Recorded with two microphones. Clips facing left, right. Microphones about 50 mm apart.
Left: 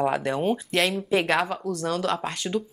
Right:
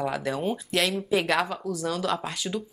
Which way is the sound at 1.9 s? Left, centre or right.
Centre.